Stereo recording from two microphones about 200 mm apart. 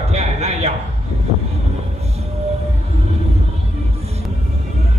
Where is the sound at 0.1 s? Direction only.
35° right (ahead or behind).